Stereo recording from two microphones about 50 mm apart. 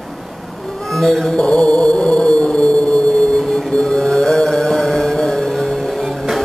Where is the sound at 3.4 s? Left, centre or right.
Centre.